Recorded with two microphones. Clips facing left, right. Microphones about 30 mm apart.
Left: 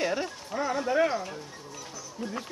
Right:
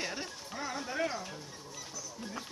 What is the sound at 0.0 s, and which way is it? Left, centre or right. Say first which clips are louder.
Speech: left 9 dB; left.